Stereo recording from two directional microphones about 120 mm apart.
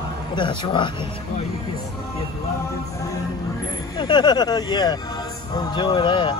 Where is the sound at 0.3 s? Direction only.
40° left (ahead or behind).